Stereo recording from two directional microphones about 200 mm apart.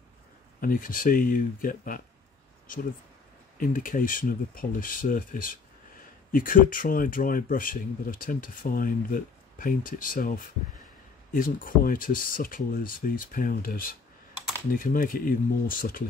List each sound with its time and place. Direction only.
0.6 s speech: 45° left (ahead or behind)
3.5 s speech: 45° left (ahead or behind)